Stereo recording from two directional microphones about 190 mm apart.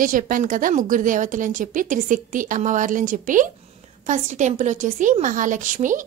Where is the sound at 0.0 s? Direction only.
45° right (ahead or behind).